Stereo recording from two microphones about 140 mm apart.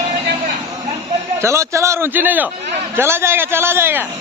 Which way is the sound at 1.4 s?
20° right (ahead or behind).